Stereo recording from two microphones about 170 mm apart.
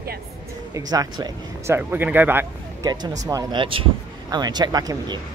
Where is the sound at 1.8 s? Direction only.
10° right (ahead or behind).